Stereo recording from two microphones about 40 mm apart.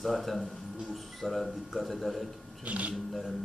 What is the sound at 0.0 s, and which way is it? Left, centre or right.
Speech, centre.